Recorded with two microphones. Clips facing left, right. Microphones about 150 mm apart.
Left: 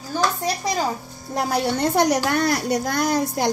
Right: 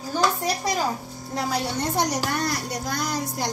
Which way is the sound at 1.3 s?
60° left (ahead or behind).